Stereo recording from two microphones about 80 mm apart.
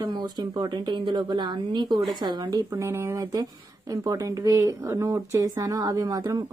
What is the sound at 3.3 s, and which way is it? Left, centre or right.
A woman's voice, right.